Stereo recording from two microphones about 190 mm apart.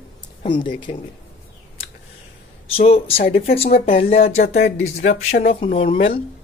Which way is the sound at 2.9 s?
30° left (ahead or behind).